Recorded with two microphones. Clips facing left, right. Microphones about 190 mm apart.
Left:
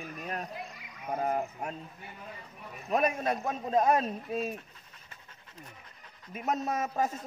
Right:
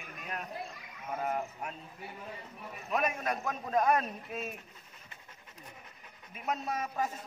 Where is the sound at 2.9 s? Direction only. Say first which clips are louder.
Left 4 dB; 30° left (ahead or behind).